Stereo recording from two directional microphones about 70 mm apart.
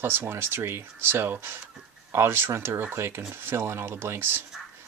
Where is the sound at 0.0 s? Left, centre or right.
Right.